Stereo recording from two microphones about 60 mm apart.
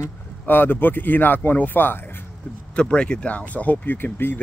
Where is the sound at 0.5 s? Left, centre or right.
Left.